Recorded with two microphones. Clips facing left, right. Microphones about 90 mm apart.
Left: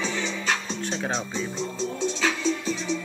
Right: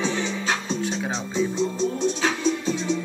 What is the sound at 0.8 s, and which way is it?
Music, 5° right (ahead or behind).